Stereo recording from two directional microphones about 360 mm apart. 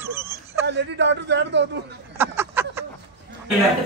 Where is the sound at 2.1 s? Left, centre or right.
Centre.